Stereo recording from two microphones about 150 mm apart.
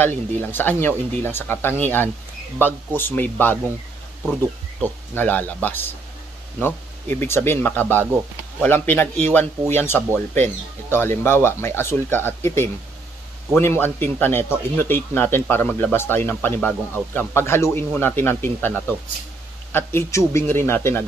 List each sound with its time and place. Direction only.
0.4 s speech: 15° left (ahead or behind)
19.7 s speech: 15° left (ahead or behind)